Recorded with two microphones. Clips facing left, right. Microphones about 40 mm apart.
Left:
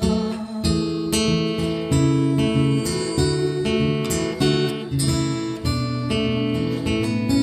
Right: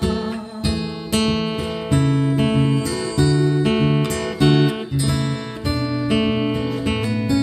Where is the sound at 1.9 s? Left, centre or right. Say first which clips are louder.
Right 1 dB; centre.